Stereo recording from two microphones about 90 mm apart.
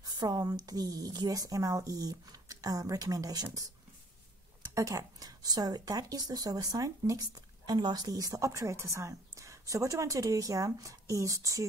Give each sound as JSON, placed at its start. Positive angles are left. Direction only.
{"t": 0.0, "sound": "a woman's voice", "side_deg": -45}
{"t": 4.7, "sound": "speech", "side_deg": -40}